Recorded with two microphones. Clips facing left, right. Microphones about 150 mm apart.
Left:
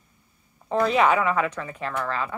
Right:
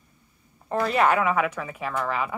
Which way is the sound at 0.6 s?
5° right (ahead or behind).